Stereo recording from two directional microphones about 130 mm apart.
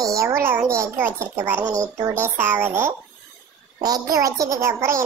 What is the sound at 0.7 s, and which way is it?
A child's voice, 20° right (ahead or behind).